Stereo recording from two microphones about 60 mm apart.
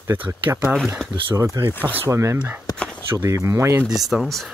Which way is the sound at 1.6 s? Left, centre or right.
Right.